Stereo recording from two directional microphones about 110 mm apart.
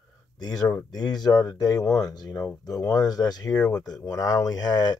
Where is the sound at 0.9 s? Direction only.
40° left (ahead or behind).